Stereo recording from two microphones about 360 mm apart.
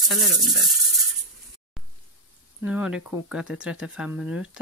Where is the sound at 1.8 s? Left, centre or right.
Centre.